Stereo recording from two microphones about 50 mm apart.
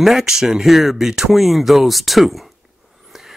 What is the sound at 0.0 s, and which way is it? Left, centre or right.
Speech, centre.